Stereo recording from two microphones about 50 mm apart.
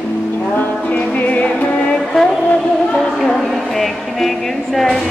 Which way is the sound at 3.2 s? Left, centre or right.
Centre.